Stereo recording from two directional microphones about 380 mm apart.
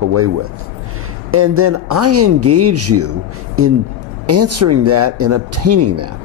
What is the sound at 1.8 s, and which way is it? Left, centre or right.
Speech, right.